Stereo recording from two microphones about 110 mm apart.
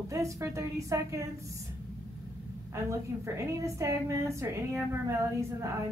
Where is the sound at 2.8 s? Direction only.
25° right (ahead or behind).